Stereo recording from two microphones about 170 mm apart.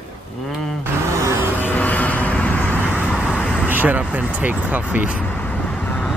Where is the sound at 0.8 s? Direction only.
15° right (ahead or behind).